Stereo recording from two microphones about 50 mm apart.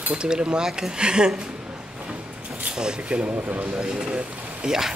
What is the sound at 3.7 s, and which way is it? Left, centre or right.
Speech, centre.